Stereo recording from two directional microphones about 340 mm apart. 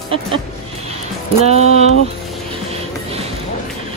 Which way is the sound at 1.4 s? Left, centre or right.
Centre.